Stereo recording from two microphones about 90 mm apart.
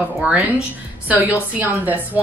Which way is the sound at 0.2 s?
15° right (ahead or behind).